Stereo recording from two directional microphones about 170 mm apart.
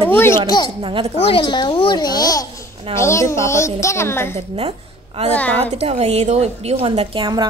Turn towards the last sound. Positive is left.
turn(degrees=-30)  # may be behind; listen again after turning